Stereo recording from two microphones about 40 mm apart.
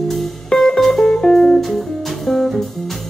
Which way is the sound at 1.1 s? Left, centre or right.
Left.